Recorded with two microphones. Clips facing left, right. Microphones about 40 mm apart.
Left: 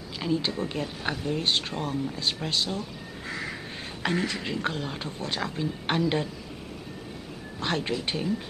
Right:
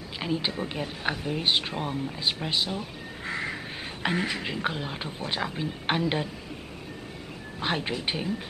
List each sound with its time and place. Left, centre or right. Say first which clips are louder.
0.2 s speech: left 2 dB; centre
3.3 s crow: right 3 dB; right
4.0 s speech: even; centre
7.6 s speech: even; centre